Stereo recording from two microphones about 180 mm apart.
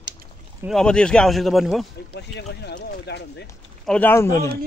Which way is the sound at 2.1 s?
70° left (ahead or behind).